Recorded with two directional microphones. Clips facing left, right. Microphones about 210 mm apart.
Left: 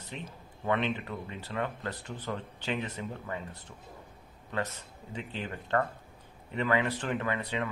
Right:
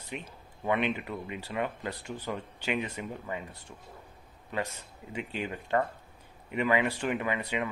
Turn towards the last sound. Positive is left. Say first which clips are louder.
# right 1 dB
turn(degrees=-10)  # may be behind; listen again after turning